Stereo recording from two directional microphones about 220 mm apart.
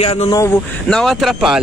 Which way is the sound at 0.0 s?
25° left (ahead or behind).